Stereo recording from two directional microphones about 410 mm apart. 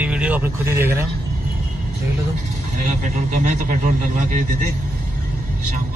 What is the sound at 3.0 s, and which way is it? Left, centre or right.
A man's voice, centre.